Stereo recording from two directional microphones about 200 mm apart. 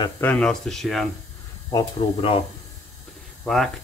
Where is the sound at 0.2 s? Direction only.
5° left (ahead or behind).